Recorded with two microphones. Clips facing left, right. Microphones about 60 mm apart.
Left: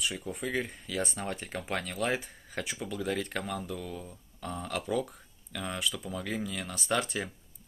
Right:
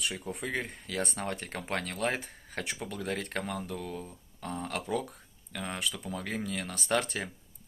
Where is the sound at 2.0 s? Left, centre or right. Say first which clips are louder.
Left 1 dB; right.